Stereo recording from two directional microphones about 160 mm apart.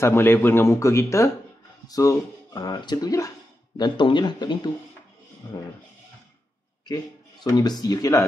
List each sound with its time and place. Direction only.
0.0 s speech: 15° left (ahead or behind)
7.4 s speech: 20° left (ahead or behind)